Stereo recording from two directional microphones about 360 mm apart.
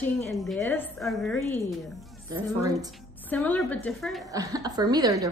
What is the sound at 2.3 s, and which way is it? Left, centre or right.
Speech, centre.